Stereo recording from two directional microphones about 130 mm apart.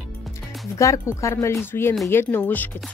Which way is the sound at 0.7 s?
25° left (ahead or behind).